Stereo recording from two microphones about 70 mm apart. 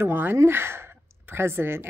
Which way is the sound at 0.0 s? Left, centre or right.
Right.